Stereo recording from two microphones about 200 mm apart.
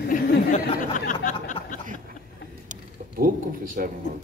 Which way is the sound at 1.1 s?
40° left (ahead or behind).